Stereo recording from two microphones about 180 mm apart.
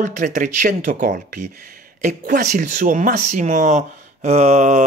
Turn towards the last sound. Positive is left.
turn(degrees=-40)  # may be behind; listen again after turning